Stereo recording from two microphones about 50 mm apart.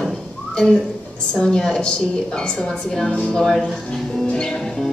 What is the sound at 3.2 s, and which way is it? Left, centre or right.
Music, centre.